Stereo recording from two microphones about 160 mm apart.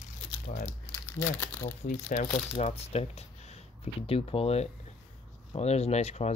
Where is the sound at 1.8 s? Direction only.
50° left (ahead or behind).